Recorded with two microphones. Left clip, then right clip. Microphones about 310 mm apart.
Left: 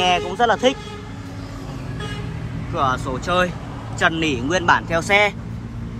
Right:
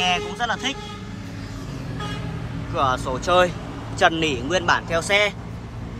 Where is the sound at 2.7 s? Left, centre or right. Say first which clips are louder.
Left 1 dB; centre.